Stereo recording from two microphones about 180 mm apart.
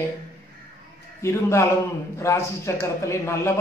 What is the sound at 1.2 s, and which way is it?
A man's voice, 15° left (ahead or behind).